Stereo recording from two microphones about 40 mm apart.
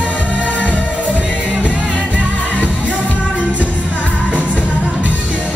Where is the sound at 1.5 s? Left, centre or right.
Right.